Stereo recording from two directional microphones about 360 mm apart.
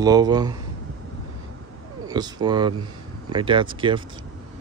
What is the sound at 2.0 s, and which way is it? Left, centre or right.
Speech, centre.